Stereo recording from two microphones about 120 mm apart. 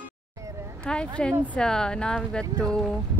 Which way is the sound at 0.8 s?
5° left (ahead or behind).